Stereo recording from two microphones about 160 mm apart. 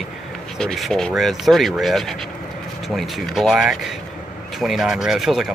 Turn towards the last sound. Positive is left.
turn(degrees=0)  # may be behind; listen again after turning